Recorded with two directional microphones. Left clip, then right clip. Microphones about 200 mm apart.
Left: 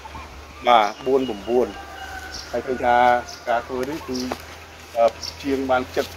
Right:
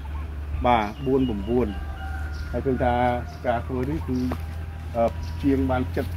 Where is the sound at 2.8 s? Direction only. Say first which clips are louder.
Left 8 dB; 10° left (ahead or behind).